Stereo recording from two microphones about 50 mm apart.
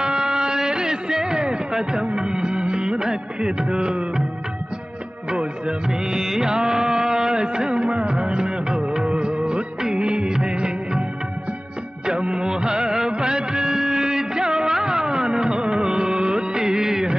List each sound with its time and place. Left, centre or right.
0.0 s music: centre
5.4 s music: centre
12.1 s music: centre